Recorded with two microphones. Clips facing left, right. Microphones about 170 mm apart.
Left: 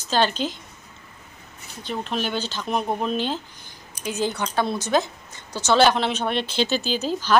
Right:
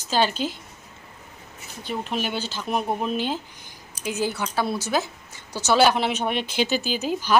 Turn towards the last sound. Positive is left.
turn(degrees=-10)  # may be behind; listen again after turning